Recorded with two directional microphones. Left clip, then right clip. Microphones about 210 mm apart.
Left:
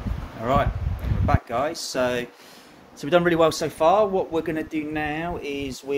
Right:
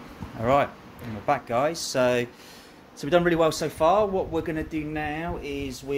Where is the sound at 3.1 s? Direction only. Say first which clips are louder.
Left 2 dB; centre (ahead or behind).